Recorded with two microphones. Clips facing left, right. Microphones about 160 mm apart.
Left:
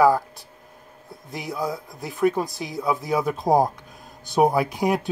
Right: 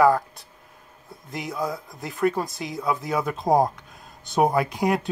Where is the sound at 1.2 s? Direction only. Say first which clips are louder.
Left 1 dB; centre (ahead or behind).